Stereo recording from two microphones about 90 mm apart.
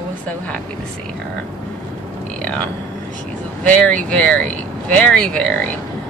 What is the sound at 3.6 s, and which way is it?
Speech, 15° left (ahead or behind).